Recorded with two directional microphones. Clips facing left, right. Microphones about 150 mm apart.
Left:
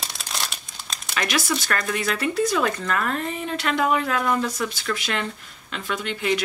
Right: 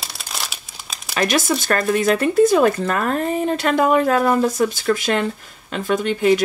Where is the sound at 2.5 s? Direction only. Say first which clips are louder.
Right 7 dB; 35° right (ahead or behind).